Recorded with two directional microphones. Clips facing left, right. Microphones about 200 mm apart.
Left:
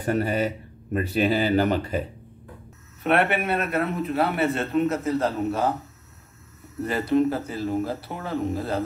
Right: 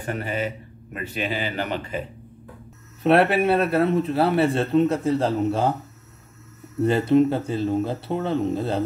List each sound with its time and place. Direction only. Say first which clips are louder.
0.0 s speech: left 4 dB; 40° left (ahead or behind)
3.0 s a man's voice: right 5 dB; 35° right (ahead or behind)
6.8 s speech: right 4 dB; 25° right (ahead or behind)